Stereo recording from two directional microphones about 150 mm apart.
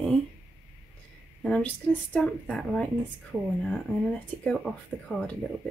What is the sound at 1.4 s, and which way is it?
A woman's voice, 5° left (ahead or behind).